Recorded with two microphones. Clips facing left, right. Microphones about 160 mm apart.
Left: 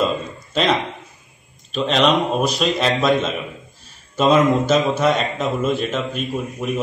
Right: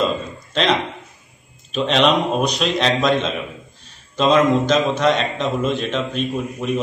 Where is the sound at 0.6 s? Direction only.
5° left (ahead or behind).